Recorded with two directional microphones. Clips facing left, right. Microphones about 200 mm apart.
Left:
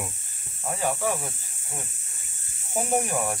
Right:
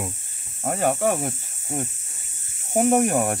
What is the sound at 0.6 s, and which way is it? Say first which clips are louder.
Speech: right 6 dB; 60° right (ahead or behind).